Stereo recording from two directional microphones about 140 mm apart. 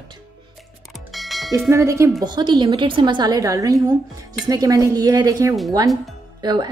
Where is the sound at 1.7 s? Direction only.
20° right (ahead or behind).